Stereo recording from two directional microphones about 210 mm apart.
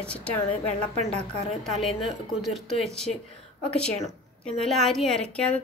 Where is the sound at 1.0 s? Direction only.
30° right (ahead or behind).